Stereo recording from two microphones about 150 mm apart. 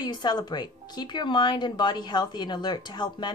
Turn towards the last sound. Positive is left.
turn(degrees=30)  # may be behind; listen again after turning